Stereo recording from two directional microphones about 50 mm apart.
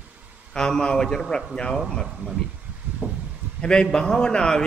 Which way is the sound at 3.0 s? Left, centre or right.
Right.